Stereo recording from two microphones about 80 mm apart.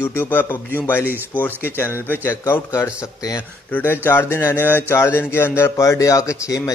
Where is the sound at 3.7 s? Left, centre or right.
Left.